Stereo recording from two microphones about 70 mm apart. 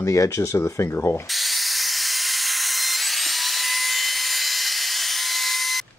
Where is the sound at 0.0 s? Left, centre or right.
Left.